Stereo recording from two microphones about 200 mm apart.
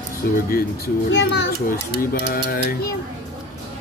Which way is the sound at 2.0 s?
45° left (ahead or behind).